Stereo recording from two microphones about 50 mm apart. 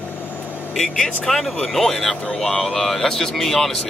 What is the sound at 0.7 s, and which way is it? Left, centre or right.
Speech, centre.